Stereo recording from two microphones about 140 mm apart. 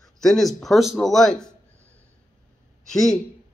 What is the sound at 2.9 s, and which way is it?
Speech, 5° left (ahead or behind).